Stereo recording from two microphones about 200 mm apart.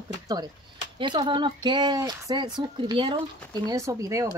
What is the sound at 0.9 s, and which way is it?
Speech, 25° right (ahead or behind).